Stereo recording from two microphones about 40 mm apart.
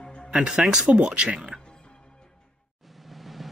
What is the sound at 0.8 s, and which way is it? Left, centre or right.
Speech, right.